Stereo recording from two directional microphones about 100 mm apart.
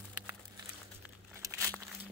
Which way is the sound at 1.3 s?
30° right (ahead or behind).